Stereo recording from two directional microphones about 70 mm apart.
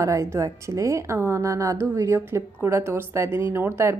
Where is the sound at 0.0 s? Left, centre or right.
Right.